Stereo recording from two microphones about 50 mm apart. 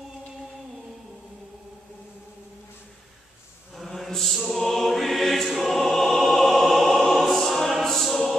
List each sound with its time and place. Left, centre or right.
3.7 s choir: centre
5.9 s music: centre
6.6 s choir: centre